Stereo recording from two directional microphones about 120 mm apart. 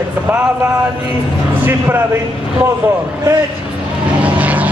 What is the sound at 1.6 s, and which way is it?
Speech, 20° right (ahead or behind).